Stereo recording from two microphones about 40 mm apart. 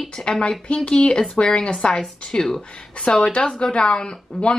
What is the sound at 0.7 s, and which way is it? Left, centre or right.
Speech, left.